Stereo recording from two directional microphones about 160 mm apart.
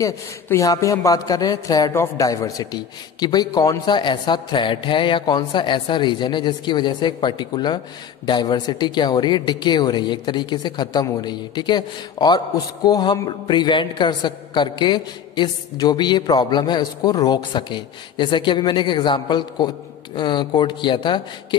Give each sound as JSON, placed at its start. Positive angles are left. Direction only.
{"t": 0.0, "sound": "speech", "side_deg": 20}